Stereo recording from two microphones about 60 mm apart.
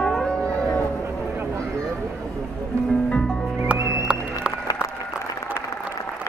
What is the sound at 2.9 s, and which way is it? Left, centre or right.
Music, centre.